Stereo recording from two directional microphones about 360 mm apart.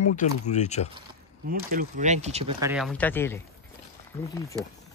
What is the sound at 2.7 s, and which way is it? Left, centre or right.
Speech, centre.